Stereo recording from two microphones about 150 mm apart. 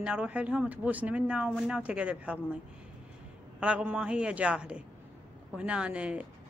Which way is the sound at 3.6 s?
10° right (ahead or behind).